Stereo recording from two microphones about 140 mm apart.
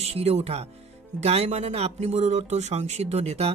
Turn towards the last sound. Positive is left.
turn(degrees=-50)  # may be behind; listen again after turning